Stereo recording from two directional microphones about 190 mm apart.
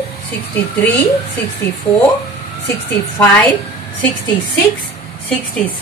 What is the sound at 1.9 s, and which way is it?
Speech, 10° left (ahead or behind).